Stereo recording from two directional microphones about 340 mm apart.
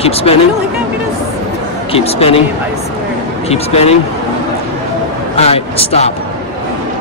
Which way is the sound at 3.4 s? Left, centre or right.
Centre.